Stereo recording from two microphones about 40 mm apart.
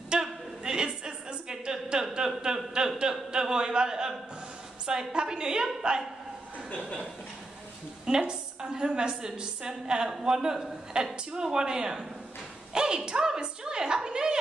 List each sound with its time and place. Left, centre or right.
0.1 s a sound: centre
3.0 s speech: centre
5.1 s a woman's voice: centre
8.0 s a woman's voice: centre